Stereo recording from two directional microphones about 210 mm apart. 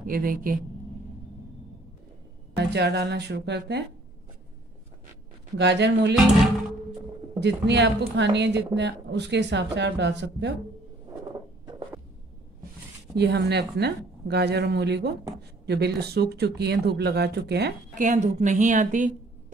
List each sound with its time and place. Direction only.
0.0 s a woman's voice: 40° right (ahead or behind)
2.5 s speech: 50° right (ahead or behind)
5.6 s a woman's voice: 55° right (ahead or behind)
7.3 s a woman's voice: 55° right (ahead or behind)
13.1 s speech: 55° right (ahead or behind)
17.9 s a woman's voice: 35° right (ahead or behind)